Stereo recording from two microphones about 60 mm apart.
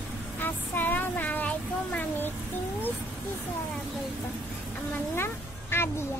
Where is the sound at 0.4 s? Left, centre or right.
Left.